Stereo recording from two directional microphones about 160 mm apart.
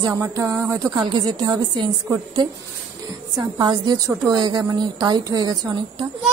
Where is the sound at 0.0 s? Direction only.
20° right (ahead or behind).